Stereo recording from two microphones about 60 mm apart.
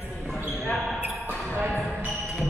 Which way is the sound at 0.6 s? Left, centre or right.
Centre.